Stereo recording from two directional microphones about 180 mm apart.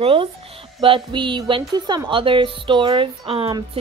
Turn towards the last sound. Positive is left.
turn(degrees=-30)  # may be behind; listen again after turning